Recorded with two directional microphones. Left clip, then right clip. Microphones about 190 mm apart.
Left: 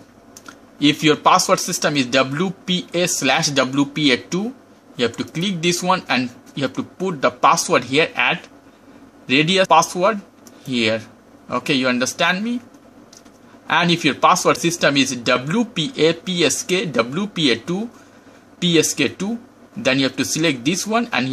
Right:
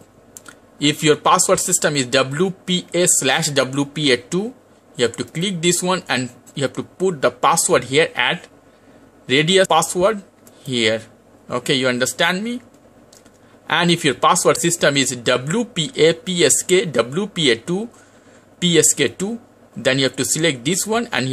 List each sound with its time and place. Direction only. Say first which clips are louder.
0.7 s speech: even; 15° right (ahead or behind)
13.7 s speech: even; 20° right (ahead or behind)